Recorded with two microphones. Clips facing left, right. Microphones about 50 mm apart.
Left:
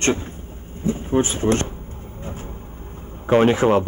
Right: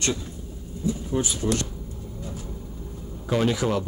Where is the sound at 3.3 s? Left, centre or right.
Left.